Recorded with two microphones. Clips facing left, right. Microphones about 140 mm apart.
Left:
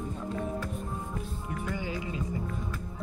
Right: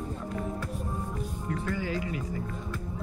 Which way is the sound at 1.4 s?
20° left (ahead or behind).